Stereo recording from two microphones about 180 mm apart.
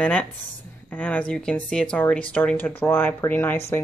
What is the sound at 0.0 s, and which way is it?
Speech, 10° left (ahead or behind).